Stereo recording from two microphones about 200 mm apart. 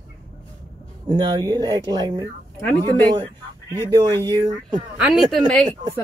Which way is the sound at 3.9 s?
20° right (ahead or behind).